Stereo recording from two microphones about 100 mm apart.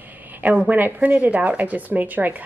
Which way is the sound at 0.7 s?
15° right (ahead or behind).